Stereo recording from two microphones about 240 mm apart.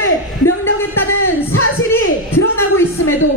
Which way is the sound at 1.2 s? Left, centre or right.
Left.